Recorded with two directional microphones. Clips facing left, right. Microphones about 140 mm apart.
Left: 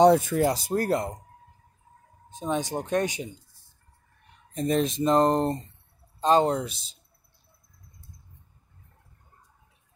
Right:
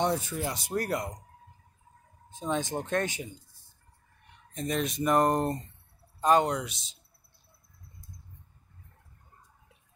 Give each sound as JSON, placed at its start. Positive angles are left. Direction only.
{"t": 0.2, "sound": "speech", "side_deg": 50}
{"t": 2.3, "sound": "speech", "side_deg": 20}
{"t": 4.6, "sound": "speech", "side_deg": 35}